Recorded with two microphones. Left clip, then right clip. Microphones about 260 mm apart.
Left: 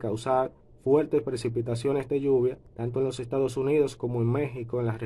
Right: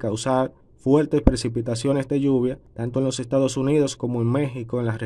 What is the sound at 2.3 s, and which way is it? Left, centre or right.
Speech, right.